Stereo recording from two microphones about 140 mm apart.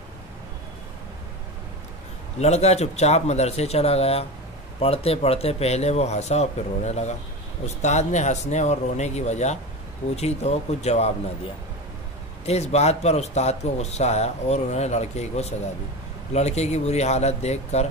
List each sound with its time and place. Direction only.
2.4 s a man's voice: 50° left (ahead or behind)
12.4 s a man's voice: 50° left (ahead or behind)